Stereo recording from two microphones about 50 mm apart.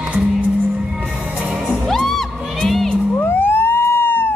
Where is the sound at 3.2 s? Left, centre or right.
Left.